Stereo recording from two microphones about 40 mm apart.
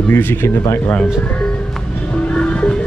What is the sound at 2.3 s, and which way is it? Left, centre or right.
Music, left.